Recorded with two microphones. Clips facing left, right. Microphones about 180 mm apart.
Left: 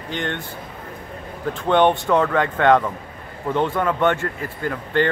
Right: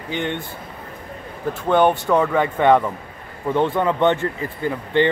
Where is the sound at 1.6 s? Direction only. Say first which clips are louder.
Even; 5° right (ahead or behind).